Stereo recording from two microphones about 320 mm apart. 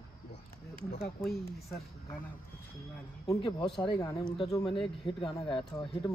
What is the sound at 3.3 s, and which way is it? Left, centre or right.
Speech, centre.